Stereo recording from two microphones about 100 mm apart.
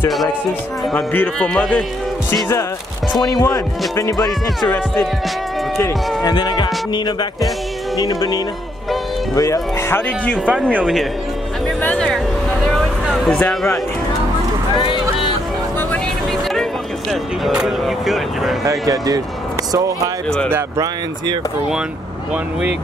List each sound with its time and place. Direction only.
0.9 s speech: 15° left (ahead or behind)
1.5 s speech: 5° left (ahead or behind)
3.1 s speech: 45° left (ahead or behind)
3.5 s speech: 35° left (ahead or behind)
5.8 s speech: 45° left (ahead or behind); by 10.0 s 25° left (ahead or behind)
10.4 s speech: 15° right (ahead or behind)
11.8 s speech: 15° left (ahead or behind)
12.6 s vehicle: 5° left (ahead or behind)
14.8 s a sound: 55° left (ahead or behind)
17.5 s speech: 5° right (ahead or behind)
18.6 s speech: 35° right (ahead or behind)
20.4 s speech: 20° right (ahead or behind)